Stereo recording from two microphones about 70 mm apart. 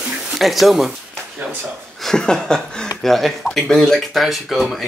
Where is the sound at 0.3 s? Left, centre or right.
Centre.